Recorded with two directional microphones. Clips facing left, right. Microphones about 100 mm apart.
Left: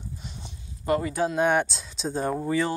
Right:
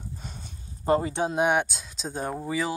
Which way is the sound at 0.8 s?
25° right (ahead or behind).